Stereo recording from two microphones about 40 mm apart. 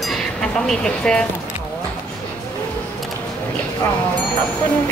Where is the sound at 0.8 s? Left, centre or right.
Left.